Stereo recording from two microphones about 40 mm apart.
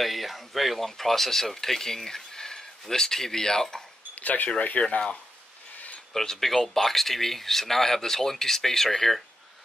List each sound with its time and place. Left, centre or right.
0.0 s speech: centre
4.1 s a sound: left
4.7 s speech: left
6.1 s speech: centre